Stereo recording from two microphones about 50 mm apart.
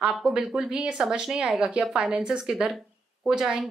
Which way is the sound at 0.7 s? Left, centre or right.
Right.